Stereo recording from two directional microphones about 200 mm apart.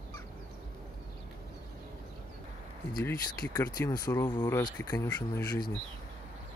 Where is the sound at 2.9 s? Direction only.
10° left (ahead or behind).